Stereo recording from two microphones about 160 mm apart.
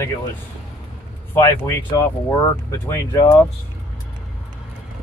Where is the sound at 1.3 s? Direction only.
15° left (ahead or behind).